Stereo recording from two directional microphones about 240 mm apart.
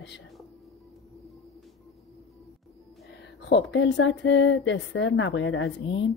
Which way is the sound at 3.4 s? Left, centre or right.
Left.